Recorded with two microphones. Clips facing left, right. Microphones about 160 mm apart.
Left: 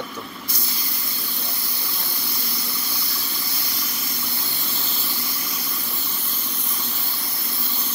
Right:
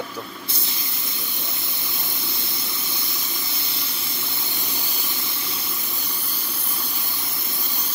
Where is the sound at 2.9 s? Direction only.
20° right (ahead or behind).